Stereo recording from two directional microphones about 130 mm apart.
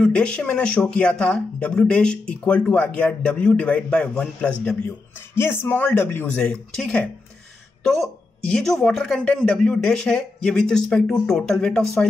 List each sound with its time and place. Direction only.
0.0 s speech: 5° left (ahead or behind)
8.5 s speech: 5° left (ahead or behind)